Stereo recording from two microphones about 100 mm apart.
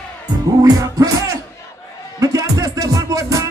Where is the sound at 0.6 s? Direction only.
35° right (ahead or behind).